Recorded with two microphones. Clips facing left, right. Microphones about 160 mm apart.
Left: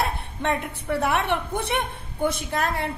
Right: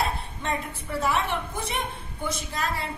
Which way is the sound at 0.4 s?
65° left (ahead or behind).